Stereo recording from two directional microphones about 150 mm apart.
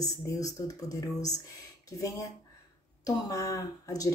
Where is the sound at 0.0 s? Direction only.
25° left (ahead or behind).